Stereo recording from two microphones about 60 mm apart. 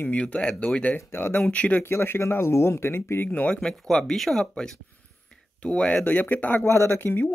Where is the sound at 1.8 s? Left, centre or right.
Left.